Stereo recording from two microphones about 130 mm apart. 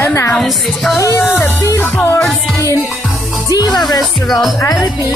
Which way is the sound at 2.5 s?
25° left (ahead or behind).